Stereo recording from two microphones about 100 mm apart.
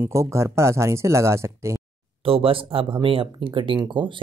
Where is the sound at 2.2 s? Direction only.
70° right (ahead or behind).